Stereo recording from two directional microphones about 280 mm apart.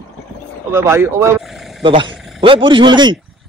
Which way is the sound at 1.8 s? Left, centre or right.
Centre.